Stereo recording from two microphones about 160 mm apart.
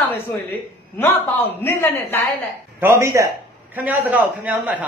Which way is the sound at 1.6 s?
15° left (ahead or behind).